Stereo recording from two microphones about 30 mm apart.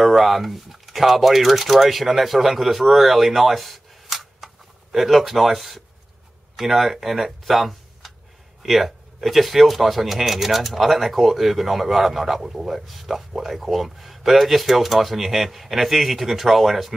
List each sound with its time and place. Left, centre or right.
0.0 s speech: centre